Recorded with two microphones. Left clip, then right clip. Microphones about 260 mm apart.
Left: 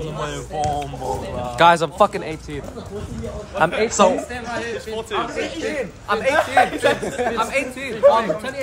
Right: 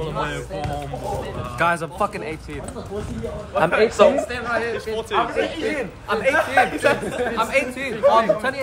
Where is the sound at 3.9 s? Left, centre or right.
Left.